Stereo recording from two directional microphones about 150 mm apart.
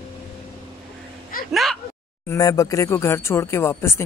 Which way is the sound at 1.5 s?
Centre (ahead or behind).